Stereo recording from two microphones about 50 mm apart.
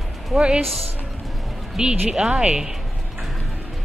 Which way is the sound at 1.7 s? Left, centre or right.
Centre.